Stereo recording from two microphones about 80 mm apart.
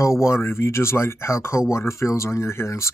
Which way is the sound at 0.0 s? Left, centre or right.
Left.